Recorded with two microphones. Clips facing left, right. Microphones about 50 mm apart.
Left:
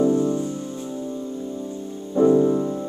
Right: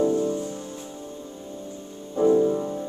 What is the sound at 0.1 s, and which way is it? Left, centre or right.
Music, left.